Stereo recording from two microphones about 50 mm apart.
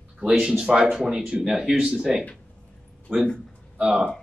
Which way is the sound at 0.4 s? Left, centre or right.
Centre.